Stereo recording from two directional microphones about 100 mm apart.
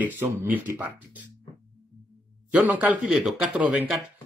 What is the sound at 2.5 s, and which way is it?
Speech, 15° right (ahead or behind).